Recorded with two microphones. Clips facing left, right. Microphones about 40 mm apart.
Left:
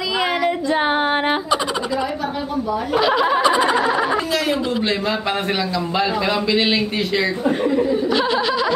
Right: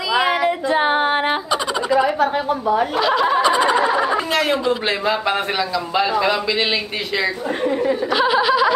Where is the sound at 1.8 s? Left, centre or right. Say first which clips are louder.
Right 6 dB; centre.